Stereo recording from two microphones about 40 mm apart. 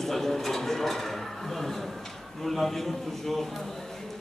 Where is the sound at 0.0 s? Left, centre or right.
Centre.